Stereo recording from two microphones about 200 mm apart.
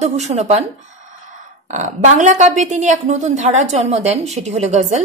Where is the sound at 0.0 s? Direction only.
35° right (ahead or behind).